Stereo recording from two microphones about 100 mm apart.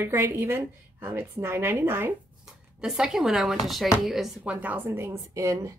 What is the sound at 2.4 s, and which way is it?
Speech, 5° right (ahead or behind).